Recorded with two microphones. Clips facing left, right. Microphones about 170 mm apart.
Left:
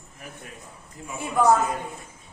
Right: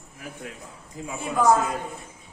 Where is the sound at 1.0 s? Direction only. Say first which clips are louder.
Right 5 dB; 90° right.